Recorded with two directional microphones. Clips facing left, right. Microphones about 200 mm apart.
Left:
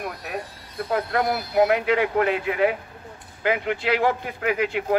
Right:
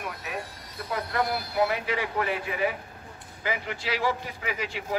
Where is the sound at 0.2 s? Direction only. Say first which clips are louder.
Left 3 dB; 60° left (ahead or behind).